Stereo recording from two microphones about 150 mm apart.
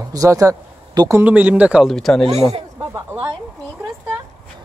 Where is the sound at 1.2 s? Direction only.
10° right (ahead or behind).